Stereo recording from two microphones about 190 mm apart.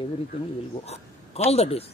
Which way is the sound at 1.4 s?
30° left (ahead or behind).